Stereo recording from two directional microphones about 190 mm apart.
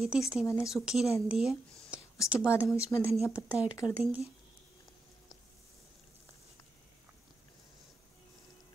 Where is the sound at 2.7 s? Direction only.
15° left (ahead or behind).